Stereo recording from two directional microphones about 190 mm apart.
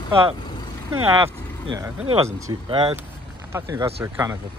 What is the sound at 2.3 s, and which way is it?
Speech, 15° right (ahead or behind).